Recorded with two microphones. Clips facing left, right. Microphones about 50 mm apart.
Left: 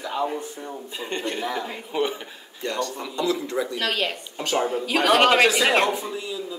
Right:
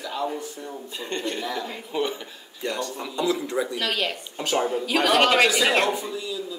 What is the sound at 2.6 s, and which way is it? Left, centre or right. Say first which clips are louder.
Speech: left 1 dB; centre.